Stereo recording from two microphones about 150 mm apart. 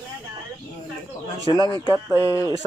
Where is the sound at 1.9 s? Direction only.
20° left (ahead or behind).